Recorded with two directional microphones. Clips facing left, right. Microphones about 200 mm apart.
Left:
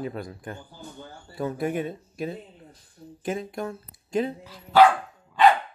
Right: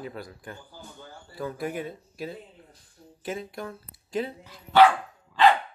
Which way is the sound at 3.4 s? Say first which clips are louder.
Left 4 dB; 20° left (ahead or behind).